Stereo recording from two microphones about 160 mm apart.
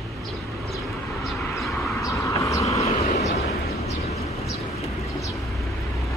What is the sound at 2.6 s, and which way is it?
Vehicle, 40° left (ahead or behind).